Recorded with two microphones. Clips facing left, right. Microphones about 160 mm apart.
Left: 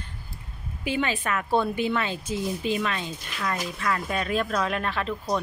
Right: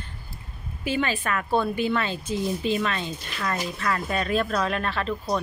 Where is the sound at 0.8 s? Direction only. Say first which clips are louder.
Right 1 dB; 15° left (ahead or behind).